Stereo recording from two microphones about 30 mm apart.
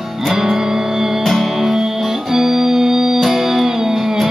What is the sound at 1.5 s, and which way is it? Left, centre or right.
Music, centre.